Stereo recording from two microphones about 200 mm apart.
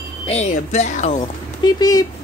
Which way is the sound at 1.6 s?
20° left (ahead or behind).